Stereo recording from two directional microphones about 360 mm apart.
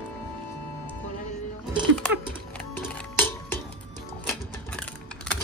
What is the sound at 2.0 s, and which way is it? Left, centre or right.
Music, centre.